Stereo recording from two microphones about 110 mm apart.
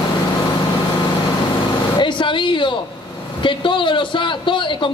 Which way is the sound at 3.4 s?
50° left (ahead or behind).